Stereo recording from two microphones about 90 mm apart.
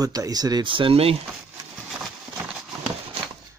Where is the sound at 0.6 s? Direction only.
75° right (ahead or behind).